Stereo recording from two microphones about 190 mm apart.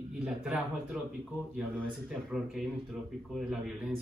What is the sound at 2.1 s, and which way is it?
Speech, centre (ahead or behind).